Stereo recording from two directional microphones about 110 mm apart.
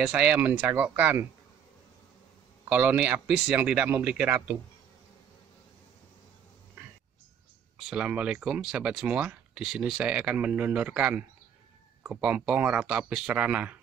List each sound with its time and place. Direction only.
0.0 s speech: 10° right (ahead or behind)
2.7 s speech: 15° right (ahead or behind)
7.9 s speech: 10° right (ahead or behind)